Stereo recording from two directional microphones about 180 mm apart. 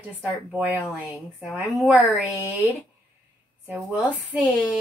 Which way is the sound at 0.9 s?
Centre (ahead or behind).